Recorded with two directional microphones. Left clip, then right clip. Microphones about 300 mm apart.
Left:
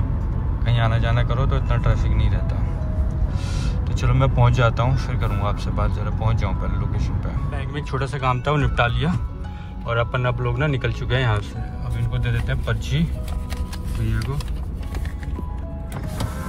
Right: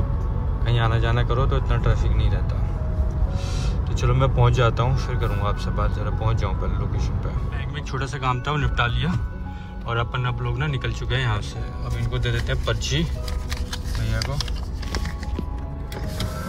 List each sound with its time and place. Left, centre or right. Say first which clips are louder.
0.7 s speech: even; centre
3.5 s speech: even; centre